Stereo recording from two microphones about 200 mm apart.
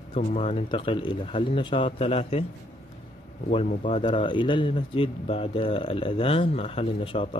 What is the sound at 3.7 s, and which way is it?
Speech, 40° left (ahead or behind).